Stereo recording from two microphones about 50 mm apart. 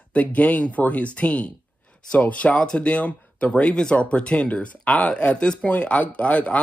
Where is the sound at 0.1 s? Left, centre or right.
Left.